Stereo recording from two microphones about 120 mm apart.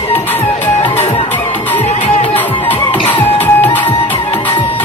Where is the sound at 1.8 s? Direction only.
65° left (ahead or behind).